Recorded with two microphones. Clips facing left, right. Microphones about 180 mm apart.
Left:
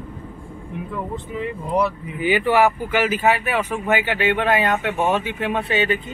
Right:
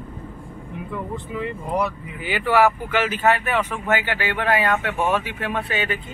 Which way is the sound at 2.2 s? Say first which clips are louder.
Left 2 dB; 15° left (ahead or behind).